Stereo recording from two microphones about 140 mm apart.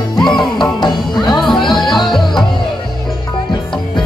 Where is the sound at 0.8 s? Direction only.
30° left (ahead or behind).